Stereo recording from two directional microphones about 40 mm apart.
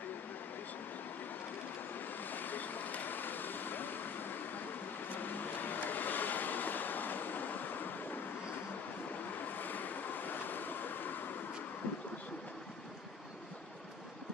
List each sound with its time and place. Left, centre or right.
2.3 s vehicle: left
9.4 s waves: left